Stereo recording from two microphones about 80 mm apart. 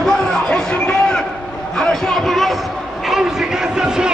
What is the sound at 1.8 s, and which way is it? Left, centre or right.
A man's voice, centre.